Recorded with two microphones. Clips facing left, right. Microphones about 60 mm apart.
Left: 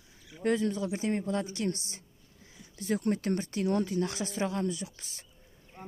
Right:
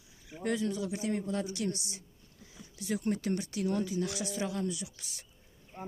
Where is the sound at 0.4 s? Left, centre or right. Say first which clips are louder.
Left 4 dB; left.